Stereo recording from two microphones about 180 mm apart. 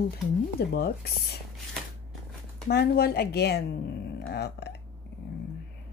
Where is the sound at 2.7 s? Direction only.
65° left (ahead or behind).